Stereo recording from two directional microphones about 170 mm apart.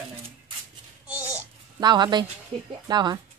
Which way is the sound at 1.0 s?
10° right (ahead or behind).